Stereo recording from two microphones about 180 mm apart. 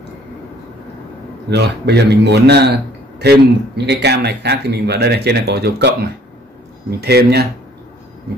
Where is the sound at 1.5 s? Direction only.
65° right (ahead or behind).